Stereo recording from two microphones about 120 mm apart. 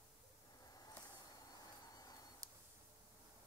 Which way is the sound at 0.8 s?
30° left (ahead or behind).